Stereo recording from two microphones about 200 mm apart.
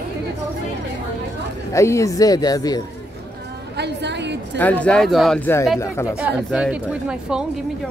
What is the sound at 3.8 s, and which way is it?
Speech, 60° right (ahead or behind).